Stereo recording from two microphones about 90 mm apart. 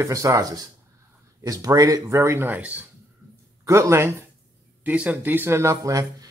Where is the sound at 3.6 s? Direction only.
30° right (ahead or behind).